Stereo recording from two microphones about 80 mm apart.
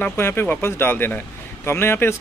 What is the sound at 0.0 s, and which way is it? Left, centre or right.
Speech, left.